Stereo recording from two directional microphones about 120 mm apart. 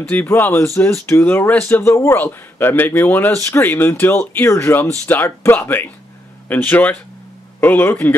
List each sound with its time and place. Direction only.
0.1 s speech: 15° left (ahead or behind)